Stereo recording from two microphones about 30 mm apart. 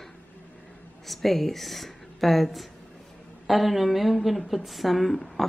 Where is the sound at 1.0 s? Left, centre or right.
Centre.